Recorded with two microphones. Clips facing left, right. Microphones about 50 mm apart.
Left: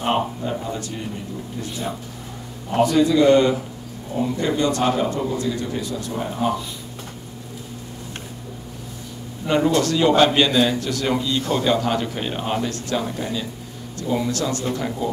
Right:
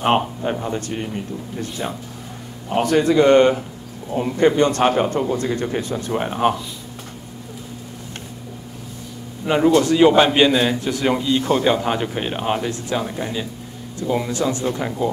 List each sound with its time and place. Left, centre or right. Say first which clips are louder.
0.0 s speech: right 3 dB; right
6.1 s speech: right 5 dB; right
9.5 s a man's voice: right 3 dB; centre